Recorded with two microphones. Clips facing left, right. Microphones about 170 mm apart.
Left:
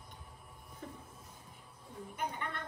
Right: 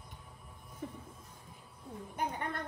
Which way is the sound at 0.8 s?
15° right (ahead or behind).